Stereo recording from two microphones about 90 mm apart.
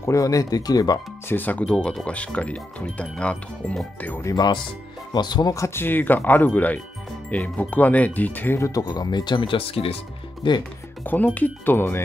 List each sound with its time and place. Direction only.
0.0 s speech: 35° left (ahead or behind)
1.3 s speech: 20° left (ahead or behind)
4.2 s speech: 40° left (ahead or behind)
5.1 s speech: 50° left (ahead or behind)
5.5 s speech: 30° left (ahead or behind)
8.5 s speech: 40° left (ahead or behind); by 9.9 s 90° left
10.4 s speech: 65° left (ahead or behind)
11.1 s speech: 20° left (ahead or behind)